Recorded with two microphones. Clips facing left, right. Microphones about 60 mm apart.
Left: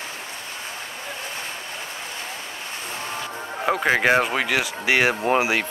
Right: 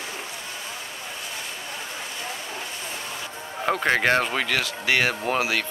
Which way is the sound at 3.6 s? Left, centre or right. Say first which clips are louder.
Left 2 dB; centre.